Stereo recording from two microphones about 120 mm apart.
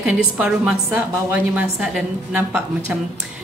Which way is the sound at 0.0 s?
5° right (ahead or behind).